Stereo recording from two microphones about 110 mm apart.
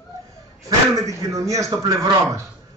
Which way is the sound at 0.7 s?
30° right (ahead or behind).